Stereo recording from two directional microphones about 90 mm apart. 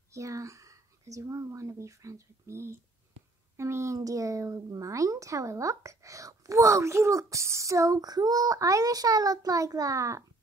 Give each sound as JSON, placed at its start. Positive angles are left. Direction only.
{"t": 0.1, "sound": "speech", "side_deg": -35}